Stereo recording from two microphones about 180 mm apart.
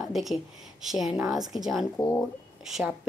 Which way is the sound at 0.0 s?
Centre (ahead or behind).